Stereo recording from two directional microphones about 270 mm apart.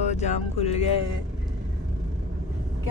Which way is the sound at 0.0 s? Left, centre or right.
Left.